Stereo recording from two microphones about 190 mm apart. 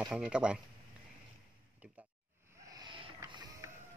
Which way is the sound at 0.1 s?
5° right (ahead or behind).